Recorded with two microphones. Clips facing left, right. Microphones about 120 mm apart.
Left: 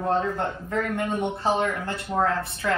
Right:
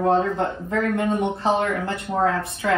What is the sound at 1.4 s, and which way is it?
Speech, 25° right (ahead or behind).